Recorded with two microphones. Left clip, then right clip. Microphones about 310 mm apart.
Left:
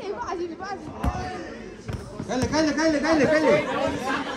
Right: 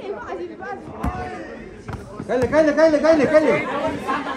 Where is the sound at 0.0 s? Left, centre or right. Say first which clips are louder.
Right 1 dB; left.